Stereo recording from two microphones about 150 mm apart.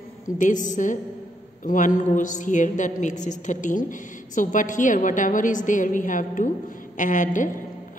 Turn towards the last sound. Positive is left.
turn(degrees=60)  # may be behind; listen again after turning